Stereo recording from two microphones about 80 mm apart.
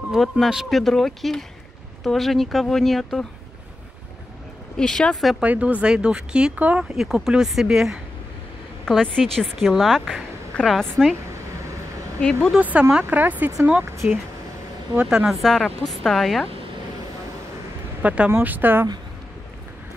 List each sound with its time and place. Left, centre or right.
0.1 s a woman's voice: centre
4.7 s speech: centre
5.4 s speech: centre
6.8 s a woman's voice: centre
8.8 s a woman's voice: centre
12.5 s speech: centre
15.0 s a woman's voice: centre
18.0 s speech: centre